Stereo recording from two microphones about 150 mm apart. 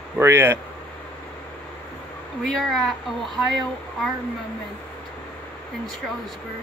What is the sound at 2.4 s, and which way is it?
Speech, 5° left (ahead or behind).